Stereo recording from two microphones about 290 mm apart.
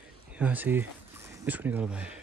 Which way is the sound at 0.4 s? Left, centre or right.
Centre.